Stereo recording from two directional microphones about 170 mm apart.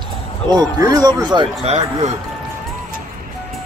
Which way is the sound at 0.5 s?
20° right (ahead or behind).